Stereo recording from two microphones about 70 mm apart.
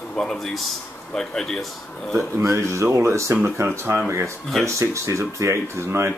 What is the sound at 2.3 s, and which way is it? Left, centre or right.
Speech, right.